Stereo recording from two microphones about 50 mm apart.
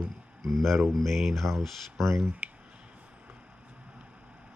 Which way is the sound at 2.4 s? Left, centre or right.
Right.